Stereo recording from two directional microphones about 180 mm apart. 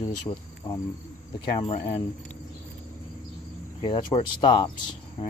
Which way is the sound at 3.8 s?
25° left (ahead or behind).